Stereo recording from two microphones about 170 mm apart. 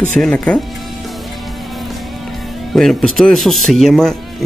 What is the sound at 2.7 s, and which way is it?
Speech, centre (ahead or behind).